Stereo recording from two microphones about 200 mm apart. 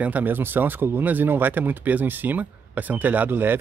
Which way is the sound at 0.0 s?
10° right (ahead or behind).